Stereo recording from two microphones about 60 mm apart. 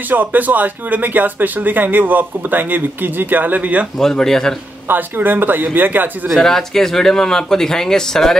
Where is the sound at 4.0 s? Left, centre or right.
Centre.